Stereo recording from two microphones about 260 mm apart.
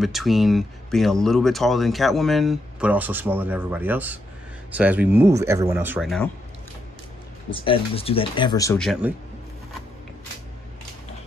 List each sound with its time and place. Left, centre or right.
0.0 s speech: centre
7.5 s speech: centre
9.0 s speech: centre